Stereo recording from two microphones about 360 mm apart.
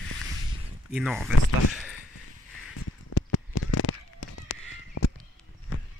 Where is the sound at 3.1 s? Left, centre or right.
Left.